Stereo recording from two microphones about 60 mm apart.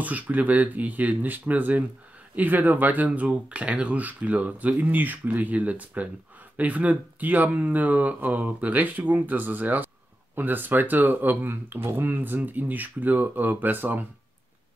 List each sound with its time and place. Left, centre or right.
0.0 s speech: right